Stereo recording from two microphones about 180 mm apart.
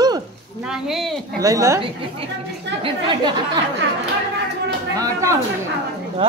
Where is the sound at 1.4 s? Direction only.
15° right (ahead or behind).